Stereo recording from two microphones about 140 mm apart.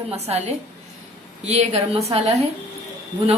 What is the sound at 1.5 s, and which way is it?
Speech, 45° right (ahead or behind).